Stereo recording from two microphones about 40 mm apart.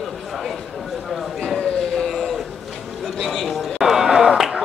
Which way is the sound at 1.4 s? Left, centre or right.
Left.